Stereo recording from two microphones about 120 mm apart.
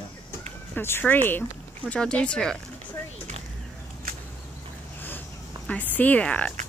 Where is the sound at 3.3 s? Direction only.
85° right.